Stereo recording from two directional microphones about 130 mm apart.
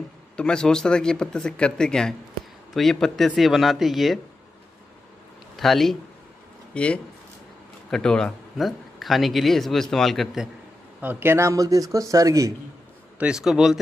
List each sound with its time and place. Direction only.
0.4 s speech: 5° left (ahead or behind)
5.6 s speech: centre (ahead or behind)
11.0 s a man's voice: 15° right (ahead or behind)
13.2 s speech: 5° right (ahead or behind)